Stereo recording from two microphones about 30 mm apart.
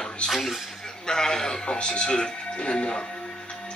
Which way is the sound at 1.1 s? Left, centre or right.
Left.